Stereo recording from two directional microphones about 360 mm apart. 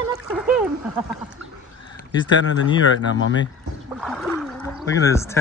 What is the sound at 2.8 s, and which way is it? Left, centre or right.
Speech, left.